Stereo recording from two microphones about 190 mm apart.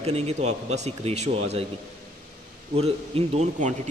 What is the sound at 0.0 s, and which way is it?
Speech, 35° right (ahead or behind).